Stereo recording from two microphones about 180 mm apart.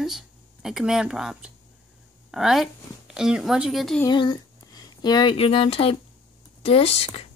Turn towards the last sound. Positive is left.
turn(degrees=35)  # may be behind; listen again after turning